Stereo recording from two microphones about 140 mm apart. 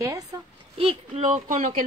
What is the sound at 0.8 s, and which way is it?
Speech, 50° right (ahead or behind).